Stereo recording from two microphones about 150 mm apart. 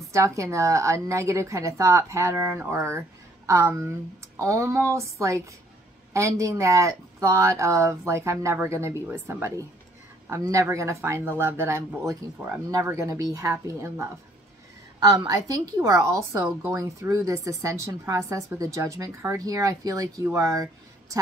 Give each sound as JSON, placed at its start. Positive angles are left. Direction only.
{"t": 0.1, "sound": "a woman's voice", "side_deg": -20}